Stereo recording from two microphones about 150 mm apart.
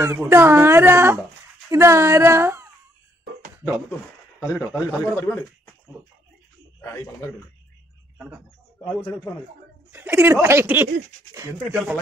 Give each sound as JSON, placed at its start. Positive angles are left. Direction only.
{"t": 0.0, "sound": "a woman's voice", "side_deg": -20}
{"t": 4.5, "sound": "a man's voice", "side_deg": -5}
{"t": 5.0, "sound": "a man's voice", "side_deg": 15}
{"t": 6.8, "sound": "a man's voice", "side_deg": 15}
{"t": 8.8, "sound": "a man's voice", "side_deg": 10}
{"t": 9.9, "sound": "speech", "side_deg": -15}